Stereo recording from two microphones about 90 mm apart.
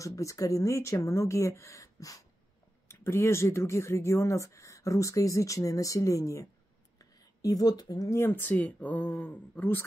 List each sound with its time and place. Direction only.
0.0 s speech: 35° left (ahead or behind)
2.9 s speech: 30° left (ahead or behind)
7.0 s a sound: 45° left (ahead or behind)
8.1 s speech: 25° left (ahead or behind)